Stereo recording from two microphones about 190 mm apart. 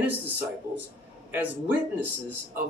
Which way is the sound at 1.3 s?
10° right (ahead or behind).